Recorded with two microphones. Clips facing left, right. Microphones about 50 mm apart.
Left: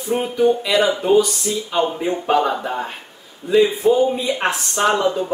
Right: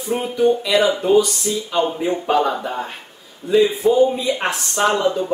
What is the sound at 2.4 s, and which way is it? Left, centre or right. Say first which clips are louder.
Speech: even; centre.